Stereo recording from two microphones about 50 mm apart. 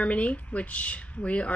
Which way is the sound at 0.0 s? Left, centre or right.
Left.